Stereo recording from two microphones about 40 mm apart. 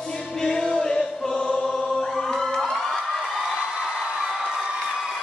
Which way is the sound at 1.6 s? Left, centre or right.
Centre.